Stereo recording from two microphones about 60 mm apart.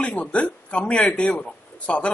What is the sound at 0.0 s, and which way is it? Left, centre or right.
Speech, left.